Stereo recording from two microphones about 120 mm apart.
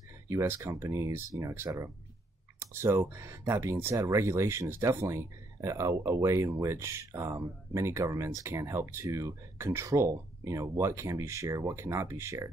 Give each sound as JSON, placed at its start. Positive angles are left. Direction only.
{"t": 0.3, "sound": "speech", "side_deg": -25}